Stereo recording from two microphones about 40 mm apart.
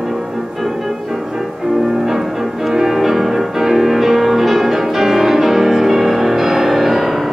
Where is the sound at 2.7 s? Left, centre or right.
Centre.